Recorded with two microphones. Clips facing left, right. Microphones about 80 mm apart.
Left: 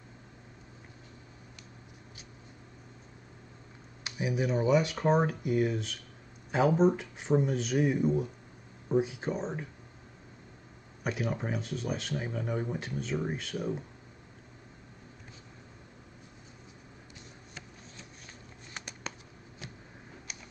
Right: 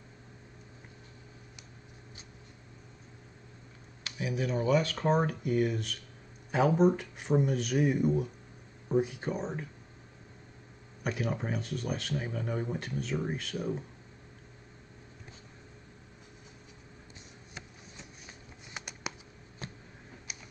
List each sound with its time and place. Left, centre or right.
4.0 s a sound: left
4.5 s speech: centre
11.1 s speech: centre
18.7 s patter: centre
20.3 s typing: centre